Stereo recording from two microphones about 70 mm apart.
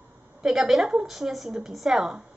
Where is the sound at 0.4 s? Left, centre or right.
Centre.